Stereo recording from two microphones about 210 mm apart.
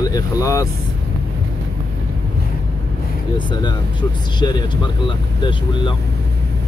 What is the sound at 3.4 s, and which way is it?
Speech, 20° left (ahead or behind).